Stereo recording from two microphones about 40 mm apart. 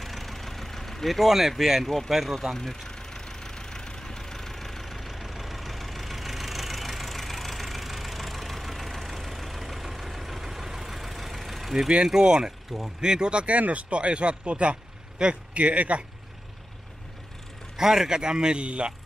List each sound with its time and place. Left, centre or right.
0.0 s vehicle: centre
1.6 s speech: centre
2.5 s vehicle: centre
11.9 s speech: centre
15.5 s speech: right
17.7 s speech: centre; by 18.9 s right